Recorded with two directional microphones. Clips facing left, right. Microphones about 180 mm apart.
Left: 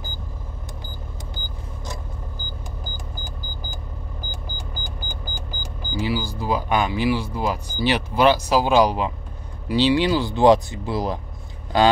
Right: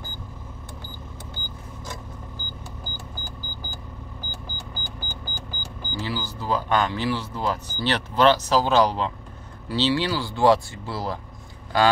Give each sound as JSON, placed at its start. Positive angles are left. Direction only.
{"t": 4.3, "sound": "vehicle", "side_deg": 10}
{"t": 5.9, "sound": "speech", "side_deg": 10}